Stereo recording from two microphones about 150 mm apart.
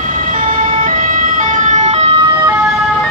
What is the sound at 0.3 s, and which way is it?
Ambulance, 60° right (ahead or behind).